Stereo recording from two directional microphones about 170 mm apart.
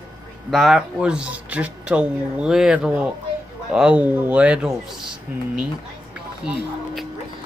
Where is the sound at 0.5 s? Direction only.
Centre (ahead or behind).